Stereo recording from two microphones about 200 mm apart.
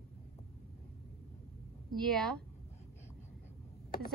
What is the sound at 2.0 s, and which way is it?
Speech, centre (ahead or behind).